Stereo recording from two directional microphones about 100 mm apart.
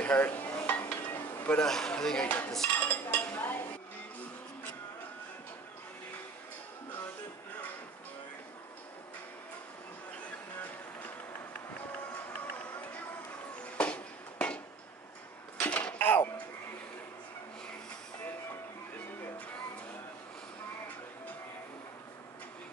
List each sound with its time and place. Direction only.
0.0 s dishes: 15° left (ahead or behind)
1.6 s speech: 5° left (ahead or behind)
2.7 s dishes: 15° left (ahead or behind)
13.7 s a sound: 10° left (ahead or behind)
15.6 s dishes: 15° left (ahead or behind)